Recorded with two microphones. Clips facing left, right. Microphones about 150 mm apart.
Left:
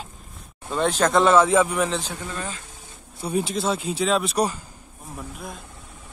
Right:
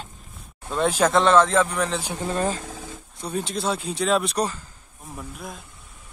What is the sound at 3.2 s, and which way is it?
Speech, 5° left (ahead or behind).